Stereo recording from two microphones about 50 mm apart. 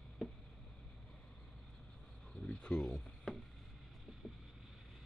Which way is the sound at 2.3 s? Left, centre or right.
Centre.